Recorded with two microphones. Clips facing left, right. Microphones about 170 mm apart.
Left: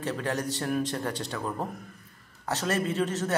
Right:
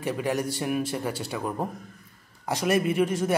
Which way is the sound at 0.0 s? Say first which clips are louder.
Right 3 dB; 10° right (ahead or behind).